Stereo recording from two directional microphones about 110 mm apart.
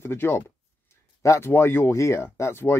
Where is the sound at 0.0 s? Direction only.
20° left (ahead or behind).